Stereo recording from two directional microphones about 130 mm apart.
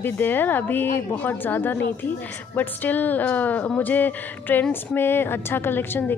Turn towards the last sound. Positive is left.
turn(degrees=15)  # may be behind; listen again after turning